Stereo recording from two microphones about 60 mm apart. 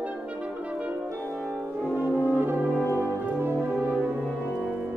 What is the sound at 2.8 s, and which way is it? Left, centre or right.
Music, left.